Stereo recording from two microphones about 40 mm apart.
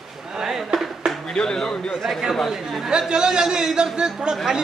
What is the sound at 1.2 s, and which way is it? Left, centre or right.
Speech, centre.